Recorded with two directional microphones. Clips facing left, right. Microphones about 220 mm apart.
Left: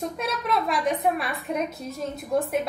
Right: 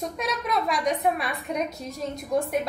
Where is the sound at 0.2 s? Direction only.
Centre (ahead or behind).